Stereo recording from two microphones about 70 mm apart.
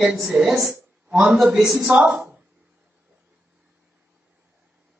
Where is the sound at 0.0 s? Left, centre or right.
Centre.